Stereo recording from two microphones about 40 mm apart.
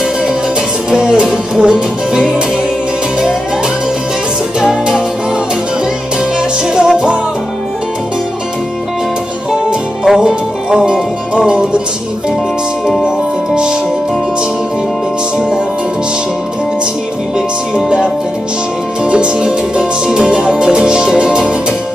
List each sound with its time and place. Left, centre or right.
0.8 s music: centre
4.6 s music: centre
6.7 s music: right
9.5 s music: centre
17.7 s music: centre
19.8 s music: centre
20.2 s music: right